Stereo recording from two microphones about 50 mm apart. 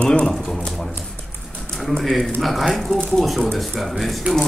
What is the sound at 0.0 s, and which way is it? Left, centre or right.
Typewriter, left.